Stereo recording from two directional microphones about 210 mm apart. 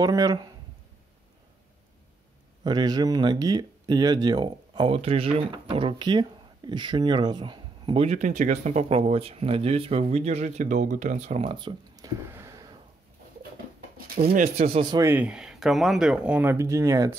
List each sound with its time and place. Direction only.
0.0 s speech: 15° right (ahead or behind)
2.6 s speech: 20° right (ahead or behind)
14.0 s speech: 45° right (ahead or behind); by 17.1 s 15° right (ahead or behind)